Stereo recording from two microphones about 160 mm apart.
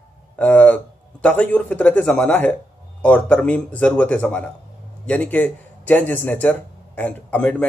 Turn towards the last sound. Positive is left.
turn(degrees=10)  # may be behind; listen again after turning